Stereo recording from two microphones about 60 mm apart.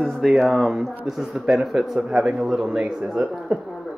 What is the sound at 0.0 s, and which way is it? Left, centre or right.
Speech, centre.